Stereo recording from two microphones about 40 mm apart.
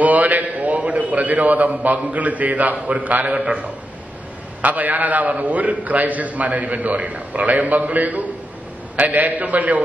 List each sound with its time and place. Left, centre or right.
0.0 s a sound: right
0.8 s a man's voice: right
3.3 s a man's voice: right
4.6 s a man's voice: right